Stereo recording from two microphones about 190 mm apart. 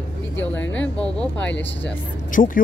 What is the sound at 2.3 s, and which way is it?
Speech, 45° left (ahead or behind).